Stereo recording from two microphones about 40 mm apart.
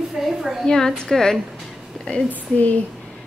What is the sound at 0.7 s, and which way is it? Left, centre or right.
Speech, centre.